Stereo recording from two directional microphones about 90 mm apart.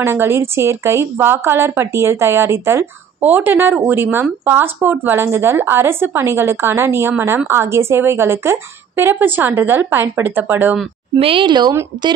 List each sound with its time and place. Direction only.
0.0 s a woman's voice: 25° right (ahead or behind)
11.1 s speech: 85° right; by 11.7 s 55° right (ahead or behind)